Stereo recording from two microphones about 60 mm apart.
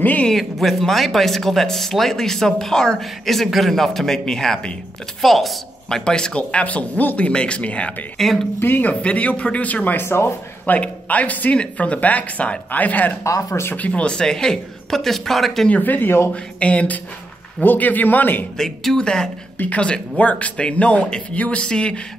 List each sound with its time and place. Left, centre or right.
0.0 s speech: left
0.3 s speech: centre; by 7.9 s left
8.2 s speech: centre
8.5 s speech: left
9.9 s speech: left
10.7 s speech: left
13.2 s speech: left
13.7 s speech: left; by 15.7 s centre
15.7 s speech: left
16.3 s speech: centre
18.9 s speech: centre